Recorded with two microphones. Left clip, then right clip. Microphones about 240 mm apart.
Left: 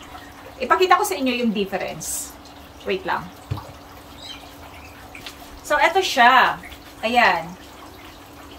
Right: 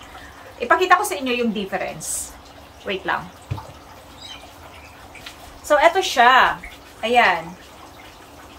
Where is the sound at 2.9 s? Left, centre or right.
Centre.